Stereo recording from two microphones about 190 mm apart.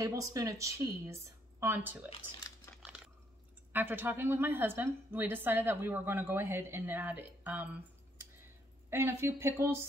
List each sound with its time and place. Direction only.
0.0 s a woman's voice: 15° right (ahead or behind)
2.7 s a sound: 10° left (ahead or behind)
3.7 s a woman's voice: 10° right (ahead or behind)
8.9 s a woman's voice: 15° right (ahead or behind)